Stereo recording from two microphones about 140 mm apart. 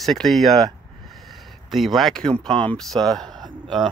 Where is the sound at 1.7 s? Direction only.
Centre (ahead or behind).